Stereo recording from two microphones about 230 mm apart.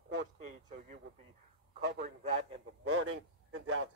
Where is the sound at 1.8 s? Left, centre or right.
Right.